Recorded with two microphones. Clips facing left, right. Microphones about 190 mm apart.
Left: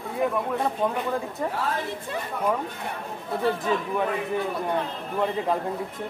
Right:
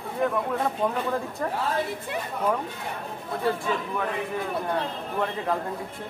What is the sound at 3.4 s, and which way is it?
Speech, 20° left (ahead or behind).